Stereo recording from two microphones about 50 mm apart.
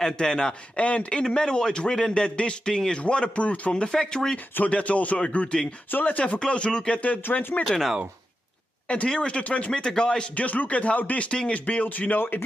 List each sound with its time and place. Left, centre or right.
0.0 s a man's voice: centre
0.8 s a man's voice: left
4.6 s speech: left
8.8 s speech: left
9.7 s a man's voice: centre
10.3 s speech: left